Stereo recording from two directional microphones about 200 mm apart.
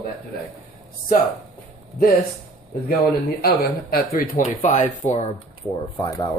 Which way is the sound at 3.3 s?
50° left (ahead or behind).